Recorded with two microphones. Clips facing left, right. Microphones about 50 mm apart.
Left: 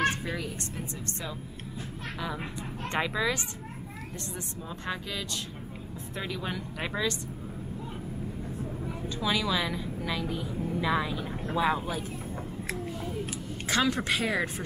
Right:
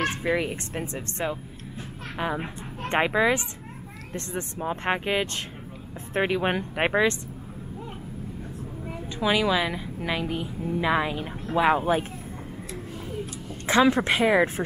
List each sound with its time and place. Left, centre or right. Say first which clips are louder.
0.2 s speech: right 9 dB; right
2.1 s speech: right 7 dB; right
9.2 s a woman's voice: right 6 dB; right
13.7 s a woman's voice: right 7 dB; right